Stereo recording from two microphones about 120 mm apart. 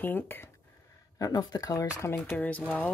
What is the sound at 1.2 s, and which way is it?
Speech, 30° left (ahead or behind).